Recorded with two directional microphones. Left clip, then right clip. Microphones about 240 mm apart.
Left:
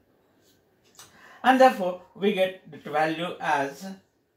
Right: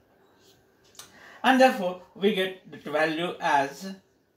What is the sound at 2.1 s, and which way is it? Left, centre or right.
Speech, centre.